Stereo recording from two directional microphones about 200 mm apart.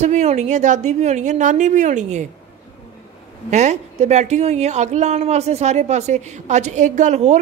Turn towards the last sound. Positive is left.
turn(degrees=-35)  # may be behind; listen again after turning